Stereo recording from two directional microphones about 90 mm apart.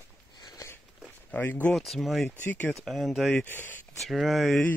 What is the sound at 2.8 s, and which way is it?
Speech, centre (ahead or behind).